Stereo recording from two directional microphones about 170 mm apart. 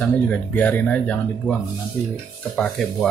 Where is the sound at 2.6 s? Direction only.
5° left (ahead or behind).